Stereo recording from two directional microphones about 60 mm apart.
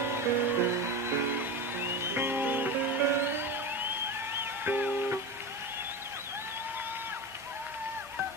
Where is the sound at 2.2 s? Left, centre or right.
Right.